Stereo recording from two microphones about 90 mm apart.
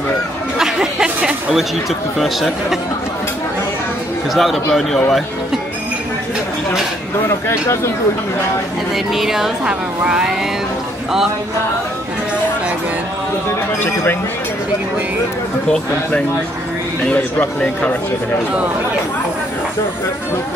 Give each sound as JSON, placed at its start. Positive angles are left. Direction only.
{"t": 0.6, "sound": "a sound", "side_deg": -5}
{"t": 2.1, "sound": "a woman's voice", "side_deg": 0}
{"t": 4.3, "sound": "a woman's voice", "side_deg": 0}
{"t": 7.2, "sound": "speech", "side_deg": 30}
{"t": 8.9, "sound": "a woman's voice", "side_deg": -5}
{"t": 17.1, "sound": "speech", "side_deg": 15}